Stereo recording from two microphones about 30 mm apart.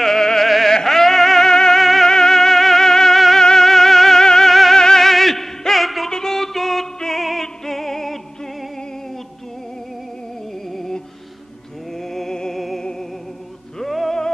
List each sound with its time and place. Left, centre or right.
0.0 s music: centre
0.7 s a sound: centre
1.5 s music: centre
1.8 s music: centre
2.0 s music: left
2.3 s music: centre
4.2 s music: left
4.5 s music: centre
4.7 s music: left
5.0 s music: centre
6.0 s music: centre
10.7 s music: centre
12.0 s music: centre
13.8 s music: centre